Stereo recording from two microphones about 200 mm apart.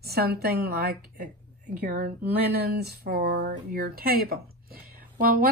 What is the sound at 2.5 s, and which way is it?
A woman's voice, 55° right (ahead or behind).